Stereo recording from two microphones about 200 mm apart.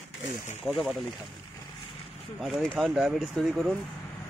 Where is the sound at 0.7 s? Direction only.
Centre (ahead or behind).